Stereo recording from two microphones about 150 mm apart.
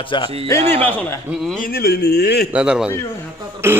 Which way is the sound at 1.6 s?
90° left.